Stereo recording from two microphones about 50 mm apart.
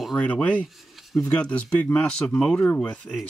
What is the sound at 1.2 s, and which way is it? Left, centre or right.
Speech, centre.